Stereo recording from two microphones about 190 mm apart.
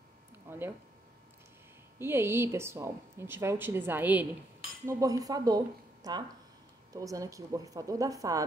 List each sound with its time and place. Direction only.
0.5 s speech: 10° right (ahead or behind)
2.0 s a woman's voice: 10° right (ahead or behind)
6.9 s a woman's voice: 15° right (ahead or behind)